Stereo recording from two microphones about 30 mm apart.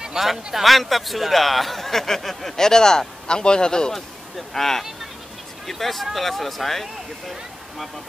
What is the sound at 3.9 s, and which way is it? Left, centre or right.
Speech, centre.